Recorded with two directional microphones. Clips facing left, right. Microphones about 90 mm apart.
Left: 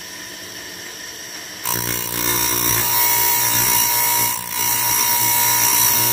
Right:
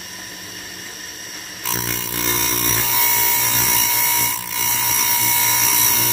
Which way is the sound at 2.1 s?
10° left (ahead or behind).